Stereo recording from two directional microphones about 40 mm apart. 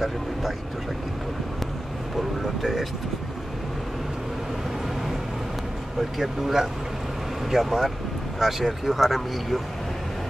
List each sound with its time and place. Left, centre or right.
0.0 s speech: centre
2.4 s speech: centre
5.9 s speech: centre